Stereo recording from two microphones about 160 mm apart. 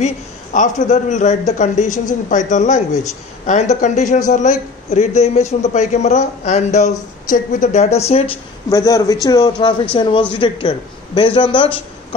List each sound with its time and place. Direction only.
0.0 s a man's voice: 50° left (ahead or behind)
8.6 s a man's voice: 20° left (ahead or behind)